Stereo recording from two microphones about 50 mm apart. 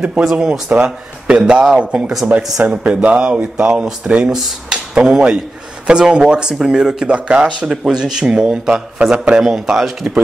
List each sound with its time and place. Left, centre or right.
0.0 s speech: centre
0.5 s speech: right; by 10.1 s centre